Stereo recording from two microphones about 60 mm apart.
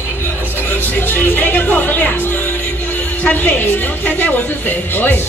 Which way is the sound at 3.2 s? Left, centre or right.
Left.